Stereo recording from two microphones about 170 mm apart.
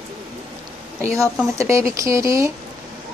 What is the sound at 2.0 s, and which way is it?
Speech, 20° right (ahead or behind).